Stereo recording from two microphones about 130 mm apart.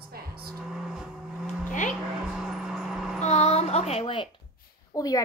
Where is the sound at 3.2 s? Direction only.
55° left (ahead or behind).